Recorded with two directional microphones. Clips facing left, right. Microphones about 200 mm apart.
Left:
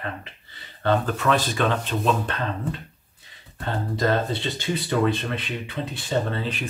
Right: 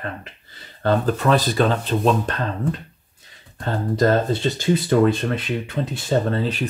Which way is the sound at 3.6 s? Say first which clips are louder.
Right 5 dB; 40° right (ahead or behind).